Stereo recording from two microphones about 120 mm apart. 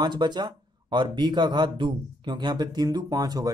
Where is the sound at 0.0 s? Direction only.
40° right (ahead or behind).